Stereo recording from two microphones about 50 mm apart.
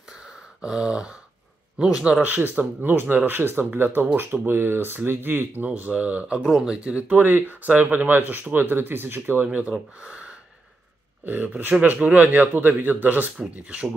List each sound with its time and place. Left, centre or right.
0.1 s a sound: centre
1.8 s speech: centre
2.2 s speech: right
6.3 s speech: centre; by 7.2 s right
7.2 s speech: right
9.5 s speech: right
11.2 s speech: right